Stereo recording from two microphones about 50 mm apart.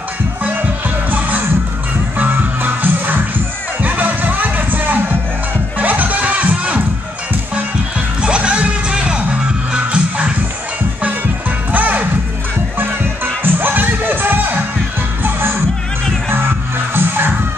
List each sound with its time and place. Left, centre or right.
0.4 s music: right
8.2 s music: right
11.7 s music: right